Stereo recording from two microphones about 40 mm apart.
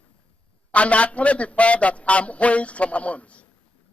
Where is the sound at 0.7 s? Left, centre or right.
Left.